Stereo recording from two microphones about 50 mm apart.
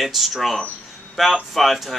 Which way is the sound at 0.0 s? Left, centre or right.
Centre.